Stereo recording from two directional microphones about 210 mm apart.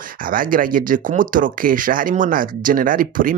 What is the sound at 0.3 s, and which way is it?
Speech, 40° right (ahead or behind).